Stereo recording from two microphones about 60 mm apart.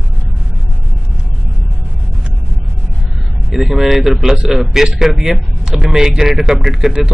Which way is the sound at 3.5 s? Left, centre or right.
Centre.